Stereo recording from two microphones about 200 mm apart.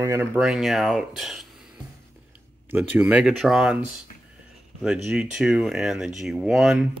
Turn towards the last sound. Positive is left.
turn(degrees=0)  # may be behind; listen again after turning